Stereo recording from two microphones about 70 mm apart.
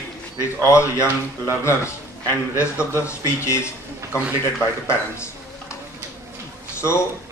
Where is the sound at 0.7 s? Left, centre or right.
Left.